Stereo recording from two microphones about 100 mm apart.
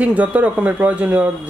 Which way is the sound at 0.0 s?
15° right (ahead or behind).